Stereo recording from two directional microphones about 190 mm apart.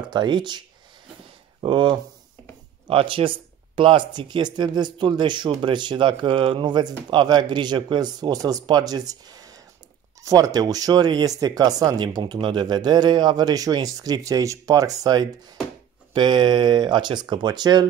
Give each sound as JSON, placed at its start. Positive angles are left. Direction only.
{"t": 0.1, "sound": "speech", "side_deg": -25}